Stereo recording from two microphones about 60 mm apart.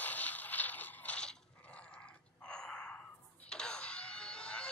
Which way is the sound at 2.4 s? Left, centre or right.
Centre.